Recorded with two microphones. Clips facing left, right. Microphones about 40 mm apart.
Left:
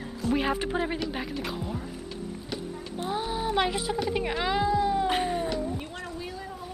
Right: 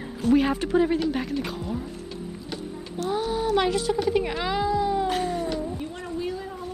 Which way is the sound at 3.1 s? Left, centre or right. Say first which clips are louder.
Right 4 dB; centre.